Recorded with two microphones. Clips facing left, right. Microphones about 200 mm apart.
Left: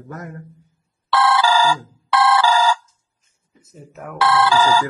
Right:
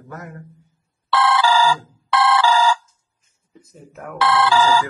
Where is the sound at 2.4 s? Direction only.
40° left (ahead or behind).